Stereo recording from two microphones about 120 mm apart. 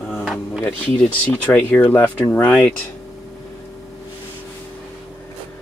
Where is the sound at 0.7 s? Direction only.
15° left (ahead or behind).